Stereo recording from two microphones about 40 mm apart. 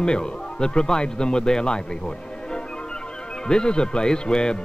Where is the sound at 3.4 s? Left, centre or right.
Left.